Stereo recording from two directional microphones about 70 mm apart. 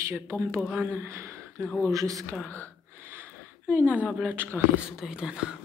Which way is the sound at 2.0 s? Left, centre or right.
Right.